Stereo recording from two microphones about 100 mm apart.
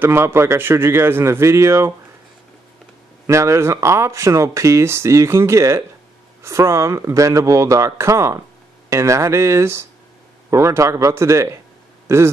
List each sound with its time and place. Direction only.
0.0 s speech: 25° right (ahead or behind)
3.3 s speech: 30° right (ahead or behind)